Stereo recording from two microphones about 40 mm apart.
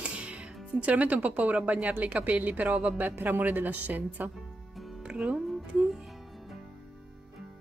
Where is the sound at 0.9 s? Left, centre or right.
Right.